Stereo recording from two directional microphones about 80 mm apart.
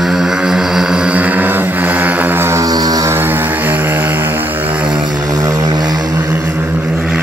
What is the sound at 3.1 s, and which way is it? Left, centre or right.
Vehicle, right.